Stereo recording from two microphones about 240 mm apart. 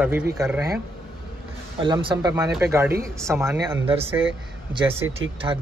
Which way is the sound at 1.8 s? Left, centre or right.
Centre.